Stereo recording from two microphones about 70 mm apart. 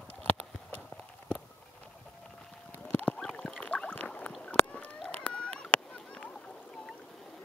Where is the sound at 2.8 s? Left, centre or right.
Left.